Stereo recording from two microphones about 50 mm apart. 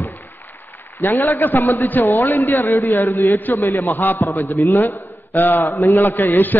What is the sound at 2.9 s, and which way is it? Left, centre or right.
Speech, left.